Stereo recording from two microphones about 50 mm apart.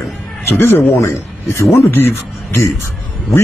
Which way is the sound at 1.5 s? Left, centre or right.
Left.